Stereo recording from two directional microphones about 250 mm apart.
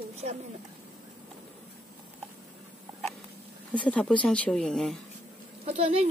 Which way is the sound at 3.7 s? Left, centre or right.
Centre.